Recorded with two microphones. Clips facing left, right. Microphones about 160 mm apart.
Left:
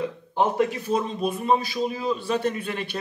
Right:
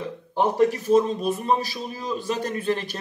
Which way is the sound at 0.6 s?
40° right (ahead or behind).